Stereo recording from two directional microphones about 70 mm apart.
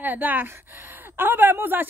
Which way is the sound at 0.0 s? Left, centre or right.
Right.